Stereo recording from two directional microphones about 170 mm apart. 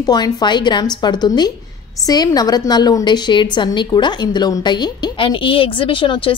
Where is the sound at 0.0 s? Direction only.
25° left (ahead or behind).